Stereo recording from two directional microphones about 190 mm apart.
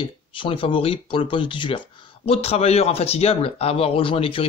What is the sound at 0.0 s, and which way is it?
Speech, 25° left (ahead or behind).